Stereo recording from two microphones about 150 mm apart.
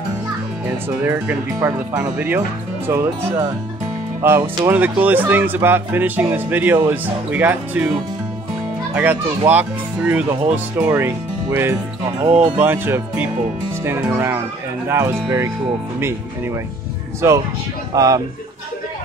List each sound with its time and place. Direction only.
0.8 s speech: 15° right (ahead or behind)
3.3 s speech: 30° right (ahead or behind)
4.2 s speech: 15° right (ahead or behind)
8.9 s speech: 10° right (ahead or behind)
12.3 s speech: 40° right (ahead or behind)
12.5 s speech: 15° right (ahead or behind)
17.2 s speech: 15° right (ahead or behind)